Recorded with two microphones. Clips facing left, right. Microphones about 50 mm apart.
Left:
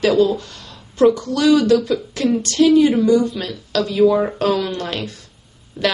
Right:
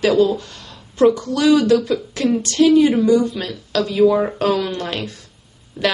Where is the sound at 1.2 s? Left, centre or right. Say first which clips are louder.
Even; right.